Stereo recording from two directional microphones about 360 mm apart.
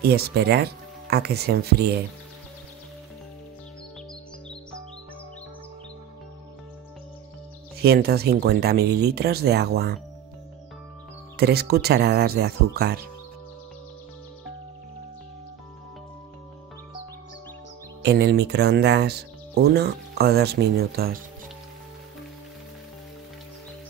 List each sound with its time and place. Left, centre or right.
0.0 s speech: right
7.8 s speech: right
11.3 s speech: right
18.0 s speech: right